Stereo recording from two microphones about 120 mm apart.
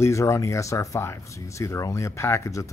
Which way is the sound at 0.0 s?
25° left (ahead or behind).